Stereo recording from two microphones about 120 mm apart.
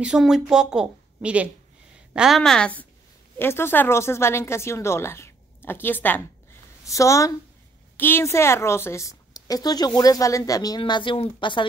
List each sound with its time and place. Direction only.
0.0 s a woman's voice: 5° right (ahead or behind); by 6.2 s 15° left (ahead or behind)
6.9 s speech: 25° left (ahead or behind)
10.8 s speech: 45° left (ahead or behind)